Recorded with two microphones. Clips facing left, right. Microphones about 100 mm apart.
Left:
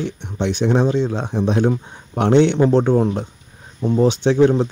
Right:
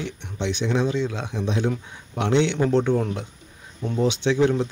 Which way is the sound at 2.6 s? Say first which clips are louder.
Left 6 dB; 35° left (ahead or behind).